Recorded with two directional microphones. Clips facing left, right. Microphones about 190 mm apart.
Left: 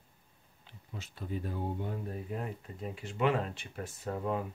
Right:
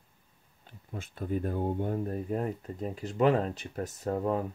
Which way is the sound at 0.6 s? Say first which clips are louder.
Right 5 dB; 50° right (ahead or behind).